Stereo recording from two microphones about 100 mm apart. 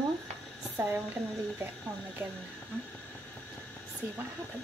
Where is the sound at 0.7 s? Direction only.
25° right (ahead or behind).